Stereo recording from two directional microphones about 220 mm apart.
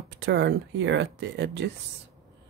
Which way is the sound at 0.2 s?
50° right (ahead or behind).